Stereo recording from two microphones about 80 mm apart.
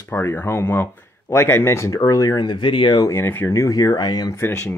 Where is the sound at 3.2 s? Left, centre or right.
Left.